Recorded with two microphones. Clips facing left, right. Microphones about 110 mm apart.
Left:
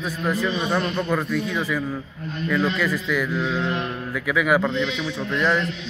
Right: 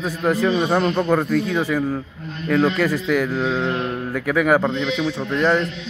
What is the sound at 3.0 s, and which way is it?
Speech, 50° right (ahead or behind).